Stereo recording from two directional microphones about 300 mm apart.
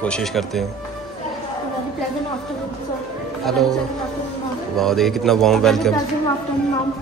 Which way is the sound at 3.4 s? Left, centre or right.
Centre.